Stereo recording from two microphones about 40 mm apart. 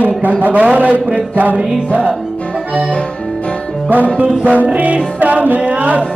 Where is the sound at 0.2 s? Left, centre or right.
Right.